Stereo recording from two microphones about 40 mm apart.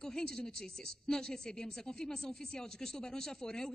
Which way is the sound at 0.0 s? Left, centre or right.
Centre.